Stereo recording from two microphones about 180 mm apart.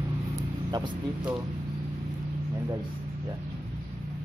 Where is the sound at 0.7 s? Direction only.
25° right (ahead or behind).